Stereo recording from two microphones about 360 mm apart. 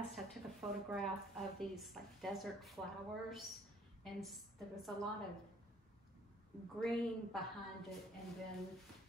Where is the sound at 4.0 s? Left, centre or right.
Centre.